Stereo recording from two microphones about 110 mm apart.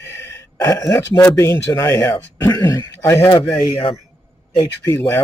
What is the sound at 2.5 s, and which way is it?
Speech, 35° left (ahead or behind).